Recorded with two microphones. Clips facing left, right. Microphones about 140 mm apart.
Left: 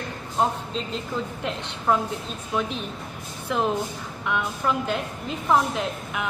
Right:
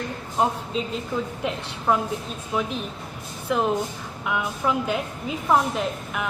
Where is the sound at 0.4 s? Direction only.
5° right (ahead or behind).